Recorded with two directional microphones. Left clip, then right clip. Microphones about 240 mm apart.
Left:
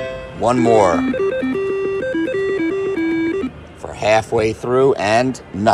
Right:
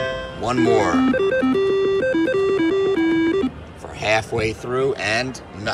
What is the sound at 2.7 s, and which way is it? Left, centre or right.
Music, right.